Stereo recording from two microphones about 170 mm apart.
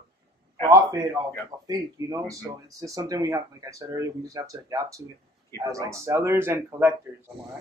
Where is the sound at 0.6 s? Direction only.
20° right (ahead or behind).